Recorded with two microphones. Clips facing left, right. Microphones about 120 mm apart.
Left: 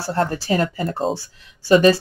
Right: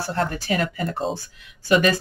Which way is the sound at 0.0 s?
35° left (ahead or behind).